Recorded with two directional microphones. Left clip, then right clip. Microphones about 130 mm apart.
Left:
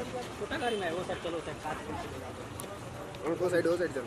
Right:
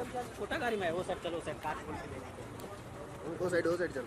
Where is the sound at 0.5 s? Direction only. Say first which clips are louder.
Left 1 dB; 45° right (ahead or behind).